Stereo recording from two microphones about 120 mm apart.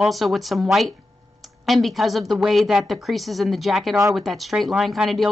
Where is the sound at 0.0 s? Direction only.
Centre (ahead or behind).